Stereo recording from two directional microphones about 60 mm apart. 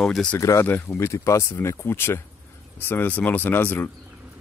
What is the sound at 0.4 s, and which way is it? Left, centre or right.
Speech, left.